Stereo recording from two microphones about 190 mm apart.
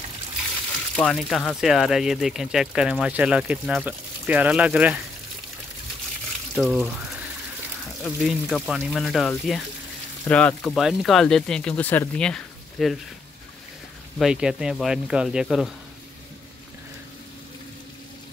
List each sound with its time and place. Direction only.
0.9 s speech: 5° left (ahead or behind)
6.5 s speech: centre (ahead or behind)
8.0 s speech: centre (ahead or behind)
14.1 s speech: 5° right (ahead or behind)